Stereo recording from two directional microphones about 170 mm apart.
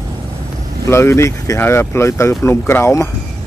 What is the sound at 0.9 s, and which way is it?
Speech, 15° left (ahead or behind).